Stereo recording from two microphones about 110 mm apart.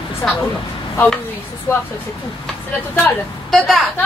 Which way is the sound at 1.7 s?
20° left (ahead or behind).